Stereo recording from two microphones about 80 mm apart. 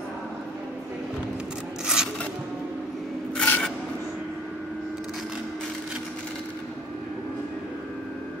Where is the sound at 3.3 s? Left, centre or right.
Centre.